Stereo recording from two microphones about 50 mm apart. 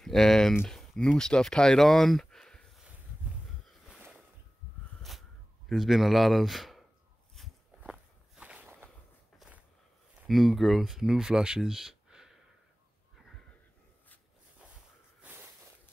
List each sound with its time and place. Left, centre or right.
0.0 s speech: centre
5.7 s speech: centre
7.8 s walk: right
10.2 s speech: centre
15.2 s a sound: right